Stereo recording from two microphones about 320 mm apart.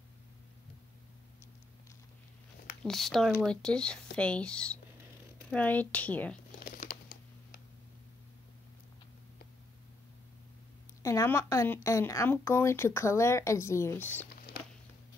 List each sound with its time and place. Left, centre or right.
2.8 s speech: centre
6.6 s crumpling: left
11.0 s speech: centre